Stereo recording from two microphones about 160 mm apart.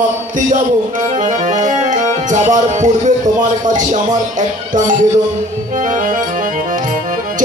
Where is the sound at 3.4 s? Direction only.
55° right (ahead or behind).